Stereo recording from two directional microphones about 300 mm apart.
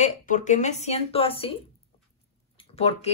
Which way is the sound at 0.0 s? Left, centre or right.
Left.